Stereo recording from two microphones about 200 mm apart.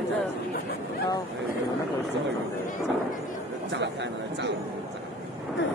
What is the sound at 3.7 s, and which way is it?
Speech, 60° right (ahead or behind).